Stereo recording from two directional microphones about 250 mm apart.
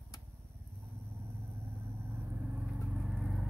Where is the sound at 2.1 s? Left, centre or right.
Centre.